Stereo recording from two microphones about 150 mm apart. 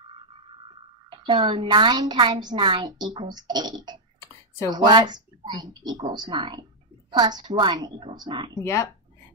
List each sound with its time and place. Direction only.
0.0 s a woman's voice: 35° right (ahead or behind)